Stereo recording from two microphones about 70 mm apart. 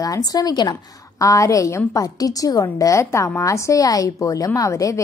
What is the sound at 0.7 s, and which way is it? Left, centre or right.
A woman's voice, left.